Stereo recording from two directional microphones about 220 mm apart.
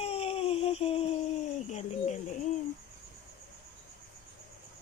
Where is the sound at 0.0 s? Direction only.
25° left (ahead or behind).